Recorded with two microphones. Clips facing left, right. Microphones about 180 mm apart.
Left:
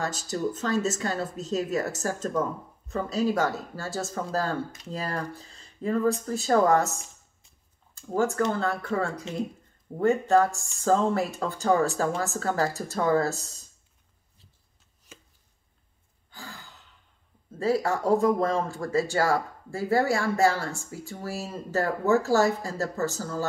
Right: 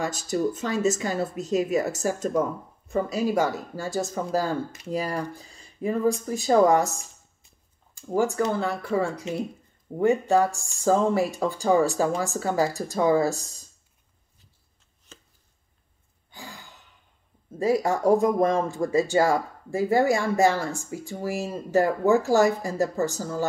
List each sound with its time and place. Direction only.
0.0 s speech: 10° right (ahead or behind)
7.9 s speech: 10° right (ahead or behind)
15.1 s chopping: 10° left (ahead or behind)
16.3 s sigh: 15° right (ahead or behind)
17.6 s speech: 15° right (ahead or behind)